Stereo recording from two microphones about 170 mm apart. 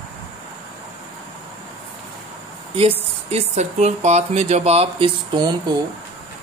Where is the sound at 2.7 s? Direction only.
35° right (ahead or behind).